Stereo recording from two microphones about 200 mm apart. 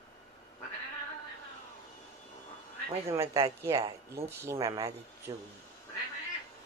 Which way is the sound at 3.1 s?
15° right (ahead or behind).